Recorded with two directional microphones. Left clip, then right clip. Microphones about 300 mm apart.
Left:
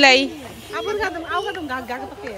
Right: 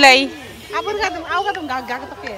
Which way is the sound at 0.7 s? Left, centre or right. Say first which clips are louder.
Right 3 dB; right.